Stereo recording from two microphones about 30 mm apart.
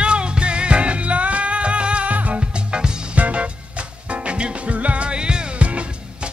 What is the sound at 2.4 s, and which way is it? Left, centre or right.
Music, right.